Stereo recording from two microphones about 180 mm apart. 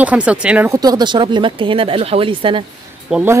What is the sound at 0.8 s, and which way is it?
Speech, 25° right (ahead or behind).